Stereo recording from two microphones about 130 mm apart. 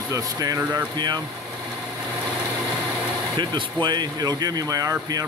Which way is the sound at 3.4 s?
35° right (ahead or behind).